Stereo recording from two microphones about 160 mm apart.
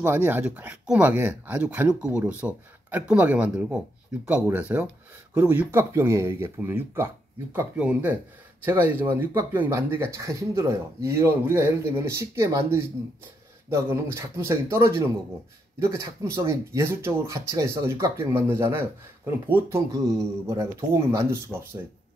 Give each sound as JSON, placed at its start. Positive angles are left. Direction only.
{"t": 0.0, "sound": "speech", "side_deg": -10}